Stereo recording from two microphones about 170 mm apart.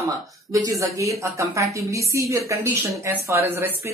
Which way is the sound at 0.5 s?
20° right (ahead or behind).